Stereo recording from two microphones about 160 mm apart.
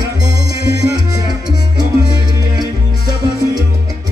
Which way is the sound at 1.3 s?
25° right (ahead or behind).